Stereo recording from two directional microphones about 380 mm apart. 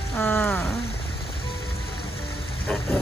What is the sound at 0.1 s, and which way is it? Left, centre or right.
Rain, centre.